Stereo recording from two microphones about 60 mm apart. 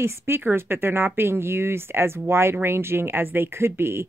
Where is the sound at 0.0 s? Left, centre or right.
Right.